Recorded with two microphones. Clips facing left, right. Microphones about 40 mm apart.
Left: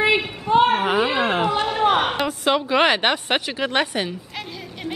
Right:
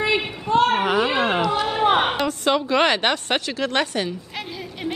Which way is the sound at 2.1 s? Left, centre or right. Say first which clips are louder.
Even; centre.